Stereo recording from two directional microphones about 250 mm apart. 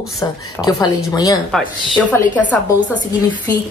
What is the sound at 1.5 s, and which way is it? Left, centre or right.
A woman's voice, centre.